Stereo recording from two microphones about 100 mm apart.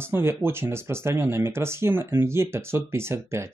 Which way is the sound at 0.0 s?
25° right (ahead or behind).